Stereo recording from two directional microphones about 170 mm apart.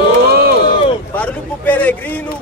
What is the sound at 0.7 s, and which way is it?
Speech, 30° left (ahead or behind).